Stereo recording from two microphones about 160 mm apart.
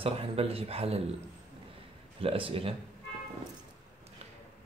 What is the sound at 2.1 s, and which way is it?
Speech, 35° right (ahead or behind).